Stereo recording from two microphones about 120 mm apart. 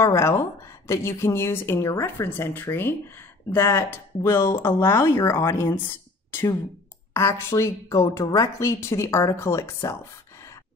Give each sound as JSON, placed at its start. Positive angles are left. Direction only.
{"t": 0.0, "sound": "a woman's voice", "side_deg": 20}